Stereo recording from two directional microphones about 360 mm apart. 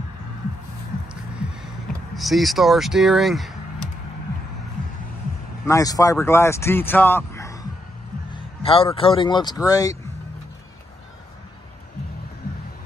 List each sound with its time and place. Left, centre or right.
2.1 s speech: centre
5.7 s speech: centre